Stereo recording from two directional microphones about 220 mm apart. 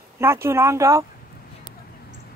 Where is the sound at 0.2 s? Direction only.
10° right (ahead or behind).